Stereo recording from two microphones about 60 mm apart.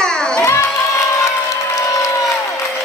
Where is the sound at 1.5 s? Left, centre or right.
Left.